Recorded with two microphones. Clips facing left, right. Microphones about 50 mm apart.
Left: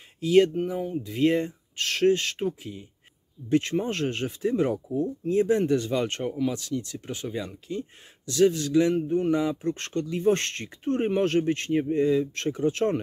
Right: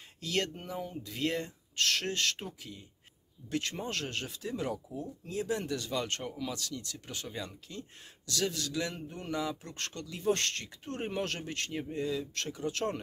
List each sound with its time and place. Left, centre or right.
0.2 s speech: centre